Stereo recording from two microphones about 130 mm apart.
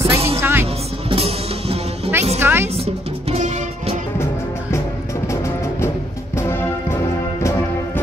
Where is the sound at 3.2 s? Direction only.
60° right (ahead or behind).